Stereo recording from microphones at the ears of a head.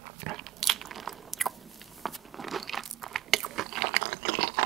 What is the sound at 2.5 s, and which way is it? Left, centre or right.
Biting, right.